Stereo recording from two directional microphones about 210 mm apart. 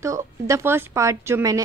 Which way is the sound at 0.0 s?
15° right (ahead or behind).